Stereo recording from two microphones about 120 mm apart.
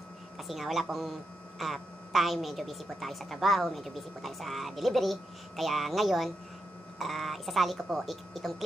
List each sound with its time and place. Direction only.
0.4 s a woman's voice: centre (ahead or behind)